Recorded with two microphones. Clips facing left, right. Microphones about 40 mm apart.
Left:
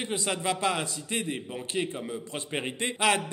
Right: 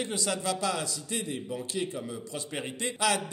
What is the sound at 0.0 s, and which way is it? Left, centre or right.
A man's voice, left.